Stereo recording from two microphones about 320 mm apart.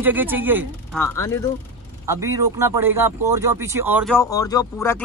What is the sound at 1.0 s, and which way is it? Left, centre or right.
Speech, centre.